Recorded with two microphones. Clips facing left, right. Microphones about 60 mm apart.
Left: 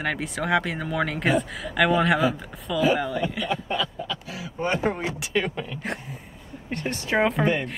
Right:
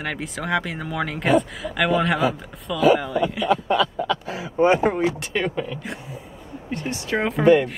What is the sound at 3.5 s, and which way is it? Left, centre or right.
Chuckle, right.